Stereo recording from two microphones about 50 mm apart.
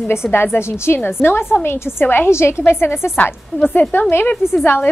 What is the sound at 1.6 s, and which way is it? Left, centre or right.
Speech, left.